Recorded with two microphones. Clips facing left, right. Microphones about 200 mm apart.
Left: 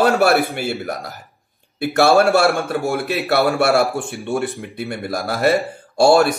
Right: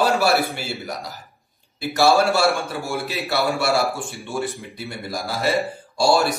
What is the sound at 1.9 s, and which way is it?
Speech, 60° left (ahead or behind).